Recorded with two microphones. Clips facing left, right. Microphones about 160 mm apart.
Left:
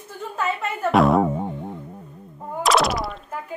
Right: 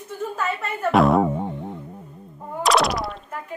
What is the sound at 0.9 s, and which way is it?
Music, centre (ahead or behind).